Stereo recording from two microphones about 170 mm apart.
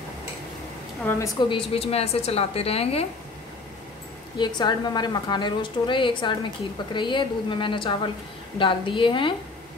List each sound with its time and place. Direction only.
1.1 s a woman's voice: 10° left (ahead or behind)
1.5 s a woman's voice: 35° left (ahead or behind)
4.4 s a woman's voice: 25° left (ahead or behind)